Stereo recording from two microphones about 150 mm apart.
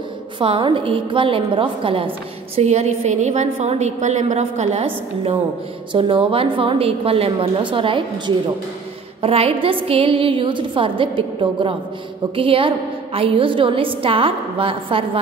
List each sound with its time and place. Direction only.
0.4 s a woman's voice: 35° right (ahead or behind)
2.5 s a woman's voice: 45° right (ahead or behind)
9.2 s a woman's voice: 40° right (ahead or behind)